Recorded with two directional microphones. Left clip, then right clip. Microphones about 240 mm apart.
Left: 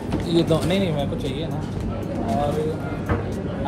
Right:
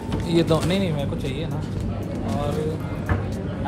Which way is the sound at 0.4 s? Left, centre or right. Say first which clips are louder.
Even; right.